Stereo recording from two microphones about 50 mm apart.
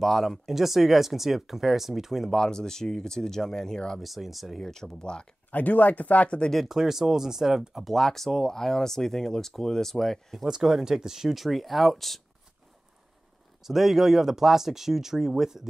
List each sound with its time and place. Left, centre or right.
0.0 s speech: centre
0.5 s speech: centre
2.3 s speech: centre
4.0 s speech: centre
5.5 s speech: left
6.5 s speech: centre
7.9 s speech: centre
10.4 s speech: centre
13.6 s speech: centre